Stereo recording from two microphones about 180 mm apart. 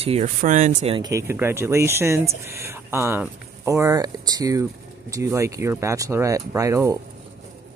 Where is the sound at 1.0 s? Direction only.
15° right (ahead or behind).